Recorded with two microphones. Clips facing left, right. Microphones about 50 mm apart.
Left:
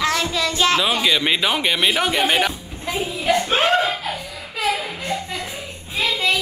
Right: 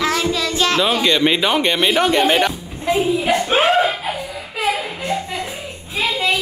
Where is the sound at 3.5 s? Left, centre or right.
Centre.